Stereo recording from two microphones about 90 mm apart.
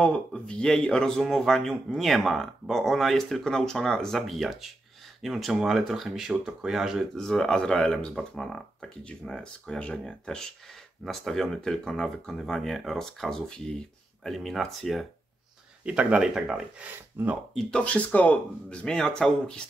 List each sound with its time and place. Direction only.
0.0 s speech: 10° left (ahead or behind)
7.2 s speech: 5° left (ahead or behind)
15.8 s speech: 10° right (ahead or behind)
16.8 s speech: 20° right (ahead or behind)
17.6 s speech: 10° left (ahead or behind)